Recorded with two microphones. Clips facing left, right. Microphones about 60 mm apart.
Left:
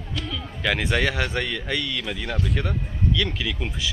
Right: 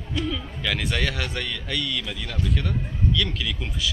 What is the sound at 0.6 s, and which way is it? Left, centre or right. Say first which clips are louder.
Speech: left 5 dB; centre.